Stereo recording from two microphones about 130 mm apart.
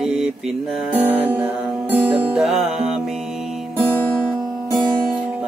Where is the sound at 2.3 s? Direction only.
5° right (ahead or behind).